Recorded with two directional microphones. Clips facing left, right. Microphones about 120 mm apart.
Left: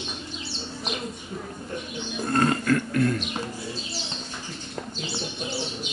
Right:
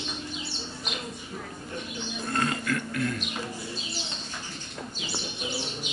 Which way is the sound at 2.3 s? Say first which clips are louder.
Left 7 dB; 45° left (ahead or behind).